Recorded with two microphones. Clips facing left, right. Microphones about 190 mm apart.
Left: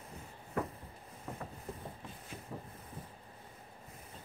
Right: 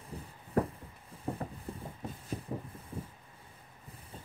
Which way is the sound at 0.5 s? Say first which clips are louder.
Right 6 dB; 35° right (ahead or behind).